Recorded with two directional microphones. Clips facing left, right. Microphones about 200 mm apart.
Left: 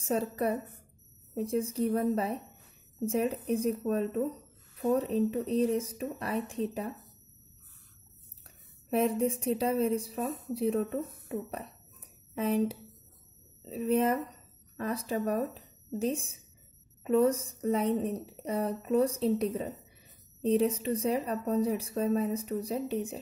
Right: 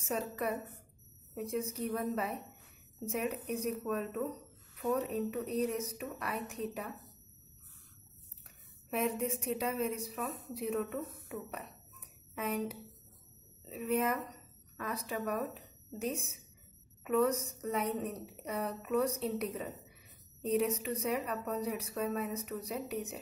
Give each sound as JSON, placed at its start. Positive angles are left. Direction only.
{"t": 0.0, "sound": "a woman's voice", "side_deg": 35}
{"t": 8.5, "sound": "a woman's voice", "side_deg": 30}